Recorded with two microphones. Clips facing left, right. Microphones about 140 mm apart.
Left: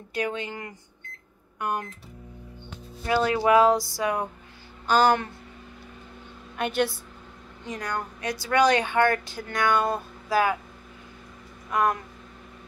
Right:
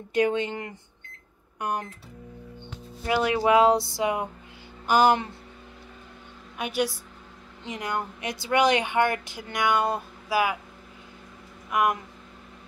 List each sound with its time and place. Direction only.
0.1 s speech: 20° right (ahead or behind)
3.1 s speech: 20° right (ahead or behind)
6.6 s a woman's voice: 10° right (ahead or behind)
7.6 s speech: 20° right (ahead or behind)
11.7 s a woman's voice: 15° right (ahead or behind)